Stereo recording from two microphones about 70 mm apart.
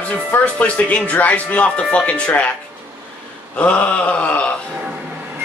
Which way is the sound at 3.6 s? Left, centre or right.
Centre.